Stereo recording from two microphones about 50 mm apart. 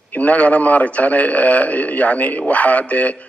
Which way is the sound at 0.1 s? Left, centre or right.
Left.